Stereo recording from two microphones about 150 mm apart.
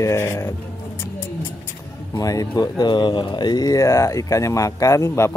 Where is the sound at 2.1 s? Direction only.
25° left (ahead or behind).